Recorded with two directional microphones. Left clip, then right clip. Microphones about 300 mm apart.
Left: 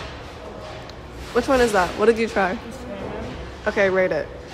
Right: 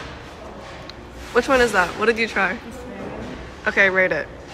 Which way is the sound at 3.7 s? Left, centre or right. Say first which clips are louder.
Right 2 dB; centre.